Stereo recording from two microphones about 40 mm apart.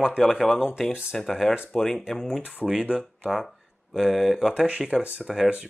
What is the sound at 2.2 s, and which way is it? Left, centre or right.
Speech, centre.